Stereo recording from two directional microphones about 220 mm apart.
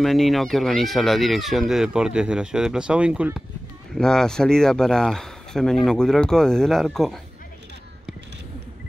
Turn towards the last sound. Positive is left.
turn(degrees=0)  # may be behind; listen again after turning